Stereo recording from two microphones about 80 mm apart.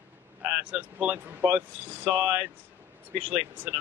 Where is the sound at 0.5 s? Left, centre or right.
Centre.